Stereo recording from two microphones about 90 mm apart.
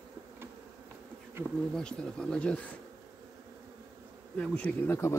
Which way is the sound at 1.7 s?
10° left (ahead or behind).